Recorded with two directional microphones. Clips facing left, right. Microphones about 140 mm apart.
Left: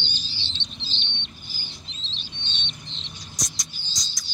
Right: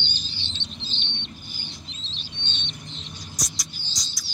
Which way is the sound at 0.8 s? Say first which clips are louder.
Right 1 dB; 30° left (ahead or behind).